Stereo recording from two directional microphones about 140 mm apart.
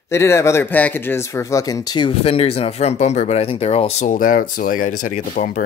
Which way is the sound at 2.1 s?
40° left (ahead or behind).